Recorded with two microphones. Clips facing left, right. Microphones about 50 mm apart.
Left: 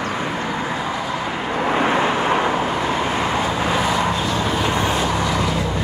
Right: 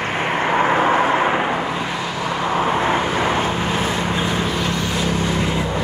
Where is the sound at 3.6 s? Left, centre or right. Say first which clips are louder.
Left 2 dB; left.